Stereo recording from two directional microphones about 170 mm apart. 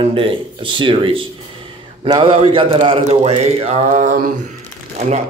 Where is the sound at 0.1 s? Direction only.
30° right (ahead or behind).